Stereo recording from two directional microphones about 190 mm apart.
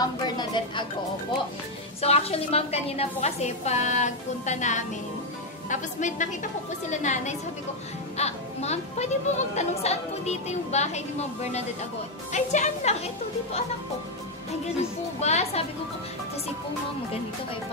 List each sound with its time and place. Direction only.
0.0 s speech: 25° left (ahead or behind)
2.0 s speech: 35° left (ahead or behind)
15.1 s speech: 35° left (ahead or behind)